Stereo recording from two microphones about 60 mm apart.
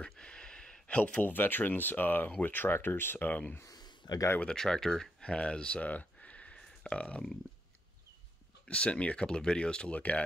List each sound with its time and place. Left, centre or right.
0.2 s a sound: centre
0.8 s speech: left
3.3 s speech: left
3.6 s a sound: left
4.4 s speech: centre
8.6 s speech: left